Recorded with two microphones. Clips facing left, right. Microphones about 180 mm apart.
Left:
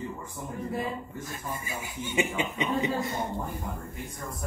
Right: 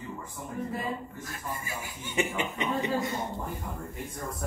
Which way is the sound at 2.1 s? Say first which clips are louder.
Left 1 dB; 15° left (ahead or behind).